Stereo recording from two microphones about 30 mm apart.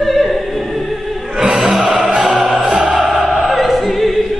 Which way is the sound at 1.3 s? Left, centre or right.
Right.